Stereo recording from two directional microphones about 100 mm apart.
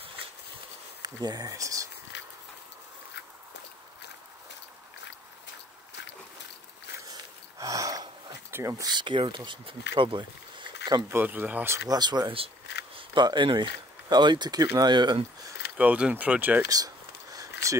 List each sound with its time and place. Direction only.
1.0 s speech: 40° right (ahead or behind)
7.1 s a sound: 35° right (ahead or behind)
8.5 s speech: 25° right (ahead or behind)
8.9 s speech: 55° right (ahead or behind)
11.1 s speech: 20° right (ahead or behind)
11.9 s speech: 45° right (ahead or behind)
15.8 s speech: 15° right (ahead or behind)
16.6 s a sound: 35° right (ahead or behind)